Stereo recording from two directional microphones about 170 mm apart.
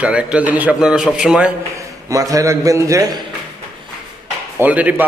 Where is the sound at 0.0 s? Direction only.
5° right (ahead or behind).